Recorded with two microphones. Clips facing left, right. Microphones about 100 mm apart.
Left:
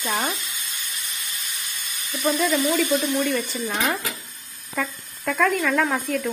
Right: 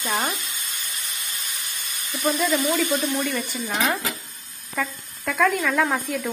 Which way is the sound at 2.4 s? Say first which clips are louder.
Left 1 dB; 20° right (ahead or behind).